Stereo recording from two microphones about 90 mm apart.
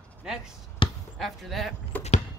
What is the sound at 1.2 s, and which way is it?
Speech, centre (ahead or behind).